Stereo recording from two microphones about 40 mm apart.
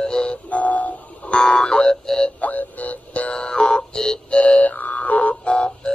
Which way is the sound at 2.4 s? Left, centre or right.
Left.